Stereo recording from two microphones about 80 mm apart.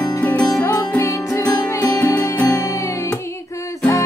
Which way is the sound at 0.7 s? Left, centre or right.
Left.